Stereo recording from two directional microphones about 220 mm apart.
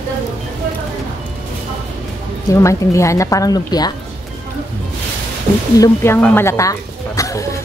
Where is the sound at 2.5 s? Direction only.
15° left (ahead or behind).